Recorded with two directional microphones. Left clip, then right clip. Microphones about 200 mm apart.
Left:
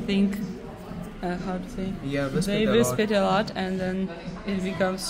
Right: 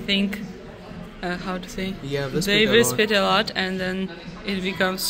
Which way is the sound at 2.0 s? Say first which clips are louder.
Right 1 dB; 50° right (ahead or behind).